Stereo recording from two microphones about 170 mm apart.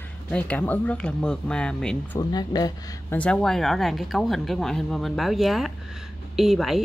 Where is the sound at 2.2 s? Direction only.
25° left (ahead or behind).